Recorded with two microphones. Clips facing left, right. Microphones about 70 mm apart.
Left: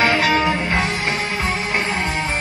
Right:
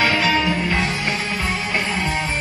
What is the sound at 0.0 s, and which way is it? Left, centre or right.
Music, left.